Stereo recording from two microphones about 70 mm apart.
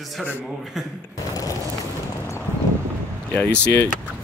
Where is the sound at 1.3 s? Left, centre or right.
Left.